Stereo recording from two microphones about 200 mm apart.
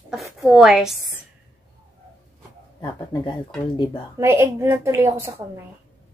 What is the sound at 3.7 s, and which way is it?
Speech, 25° left (ahead or behind).